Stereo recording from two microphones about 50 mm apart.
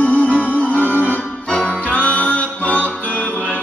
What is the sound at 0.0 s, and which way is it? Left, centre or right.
Music, left.